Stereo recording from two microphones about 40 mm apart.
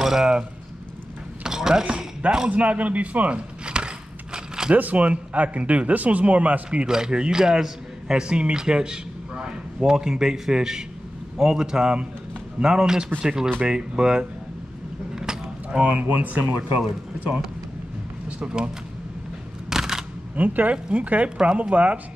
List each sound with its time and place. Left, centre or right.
0.0 s a man's voice: centre
1.4 s a sound: centre
1.9 s speech: right
2.5 s speech: right
3.6 s a sound: right
4.7 s speech: right
6.9 s a man's voice: centre
15.1 s a sound: centre
15.8 s speech: right
16.4 s speech: right
18.4 s speech: right
19.7 s a sound: centre
20.3 s speech: right